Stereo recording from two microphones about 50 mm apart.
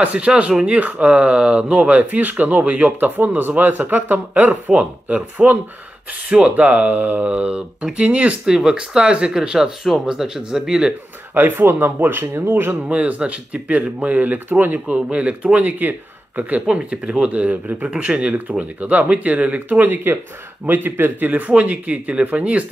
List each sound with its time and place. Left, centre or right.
0.0 s speech: right
6.2 s speech: right
6.5 s speech: right
7.8 s speech: right
8.5 s speech: centre
11.3 s speech: right
12.8 s speech: right
15.0 s speech: right
16.6 s speech: right
21.3 s speech: right